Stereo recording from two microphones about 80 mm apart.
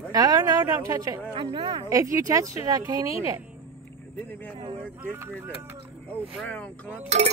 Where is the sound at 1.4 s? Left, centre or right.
Right.